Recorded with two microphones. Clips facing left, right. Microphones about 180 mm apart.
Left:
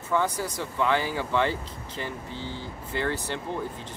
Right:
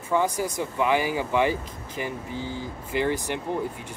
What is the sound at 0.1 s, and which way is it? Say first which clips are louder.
Speech: right 2 dB; 15° right (ahead or behind).